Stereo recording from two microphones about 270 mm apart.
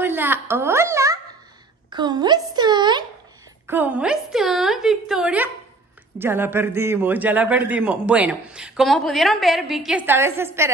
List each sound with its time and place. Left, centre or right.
0.0 s a woman's voice: centre
1.9 s a sound: centre
3.6 s a man's voice: centre